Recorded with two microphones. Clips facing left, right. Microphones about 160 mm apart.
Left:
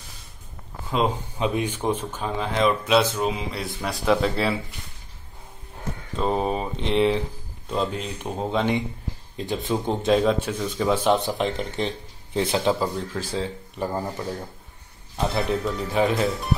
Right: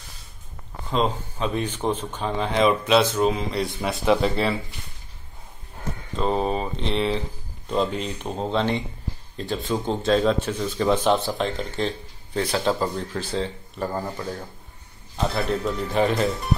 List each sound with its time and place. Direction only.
0.9 s speech: 10° left (ahead or behind)
6.1 s speech: 5° left (ahead or behind)
12.7 s speech: 5° left (ahead or behind)
15.6 s speech: centre (ahead or behind)